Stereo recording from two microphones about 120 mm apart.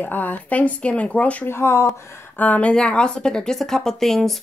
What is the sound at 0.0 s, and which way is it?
A woman's voice, 15° left (ahead or behind).